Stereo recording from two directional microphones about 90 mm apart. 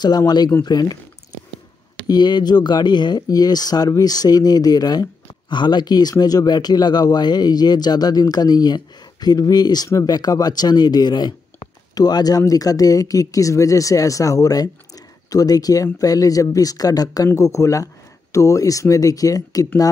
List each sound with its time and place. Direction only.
0.7 s speech: 50° left (ahead or behind)
2.0 s speech: 50° left (ahead or behind)